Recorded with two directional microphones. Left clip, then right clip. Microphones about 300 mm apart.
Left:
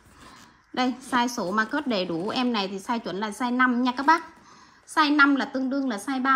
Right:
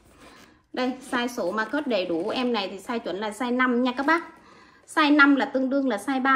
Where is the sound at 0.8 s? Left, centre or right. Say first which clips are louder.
Left 2 dB; left.